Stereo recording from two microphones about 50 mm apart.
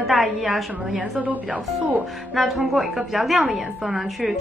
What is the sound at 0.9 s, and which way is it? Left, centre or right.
A woman's voice, right.